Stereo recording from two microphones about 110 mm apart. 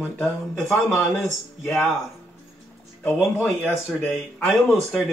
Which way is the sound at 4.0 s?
10° left (ahead or behind).